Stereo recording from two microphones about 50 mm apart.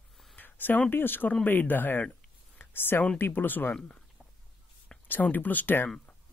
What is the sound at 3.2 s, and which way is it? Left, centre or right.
Speech, left.